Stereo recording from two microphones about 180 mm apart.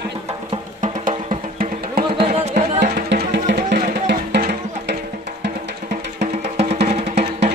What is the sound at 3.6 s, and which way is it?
Music, 55° right (ahead or behind).